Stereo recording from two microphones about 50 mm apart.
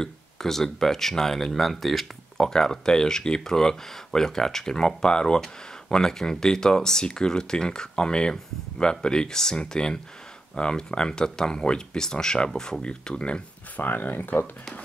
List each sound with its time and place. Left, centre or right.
0.0 s speech: centre
13.7 s speech: left